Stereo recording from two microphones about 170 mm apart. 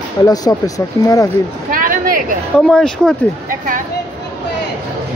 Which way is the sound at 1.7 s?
55° right (ahead or behind).